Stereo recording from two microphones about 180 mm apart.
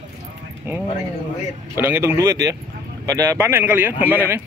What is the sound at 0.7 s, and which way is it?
Speech, 10° right (ahead or behind).